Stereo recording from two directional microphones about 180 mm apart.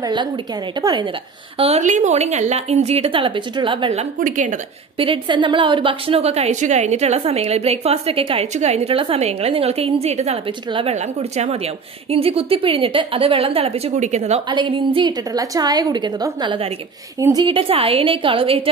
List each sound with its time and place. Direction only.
0.0 s a woman's voice: 25° right (ahead or behind)
1.6 s a woman's voice: 40° right (ahead or behind)
4.2 s a woman's voice: 45° right (ahead or behind)
4.9 s a woman's voice: 30° right (ahead or behind)
14.5 s a woman's voice: 25° right (ahead or behind)